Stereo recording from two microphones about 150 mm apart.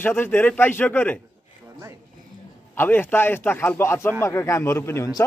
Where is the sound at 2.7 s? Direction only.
15° left (ahead or behind).